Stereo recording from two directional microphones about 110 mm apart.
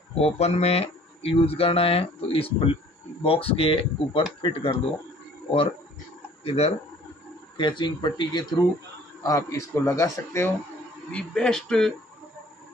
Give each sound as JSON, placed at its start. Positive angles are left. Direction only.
{"t": 0.2, "sound": "speech", "side_deg": 75}
{"t": 6.4, "sound": "speech", "side_deg": 70}
{"t": 7.5, "sound": "speech", "side_deg": 45}
{"t": 9.2, "sound": "speech", "side_deg": 30}
{"t": 11.1, "sound": "speech", "side_deg": 10}